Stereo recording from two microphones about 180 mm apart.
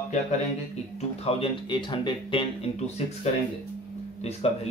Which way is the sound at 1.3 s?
30° left (ahead or behind).